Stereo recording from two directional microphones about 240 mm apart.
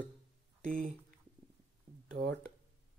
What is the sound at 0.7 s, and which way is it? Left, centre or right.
Speech, right.